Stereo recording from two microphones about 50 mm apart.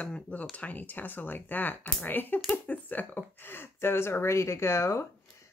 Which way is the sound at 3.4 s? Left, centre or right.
Left.